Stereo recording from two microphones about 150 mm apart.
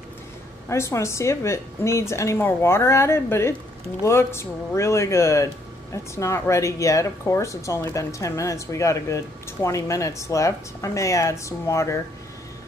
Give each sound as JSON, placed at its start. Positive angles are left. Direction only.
{"t": 0.7, "sound": "speech", "side_deg": 20}